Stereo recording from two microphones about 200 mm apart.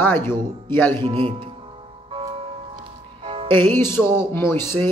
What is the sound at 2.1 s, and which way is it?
Music, 25° right (ahead or behind).